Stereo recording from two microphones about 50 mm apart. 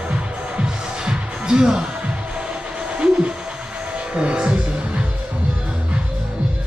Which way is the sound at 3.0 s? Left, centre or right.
Right.